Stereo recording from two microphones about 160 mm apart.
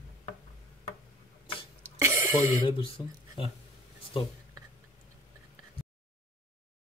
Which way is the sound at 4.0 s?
35° left (ahead or behind).